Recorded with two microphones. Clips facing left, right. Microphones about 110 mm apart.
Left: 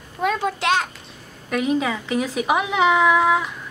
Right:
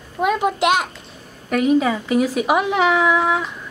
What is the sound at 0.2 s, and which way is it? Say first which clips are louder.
Speech: right 4 dB; 15° right (ahead or behind).